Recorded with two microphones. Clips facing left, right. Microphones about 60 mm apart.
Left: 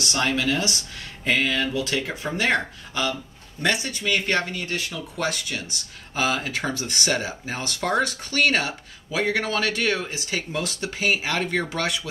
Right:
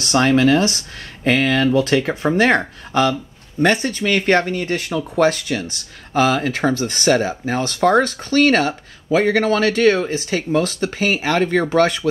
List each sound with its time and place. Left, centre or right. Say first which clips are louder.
0.2 s speech: right 9 dB; right
1.2 s speech: right 7 dB; right